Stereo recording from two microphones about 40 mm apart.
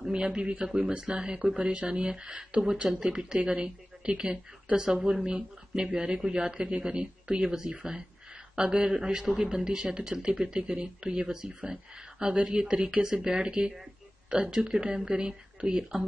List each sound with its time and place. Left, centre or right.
0.0 s a woman's voice: right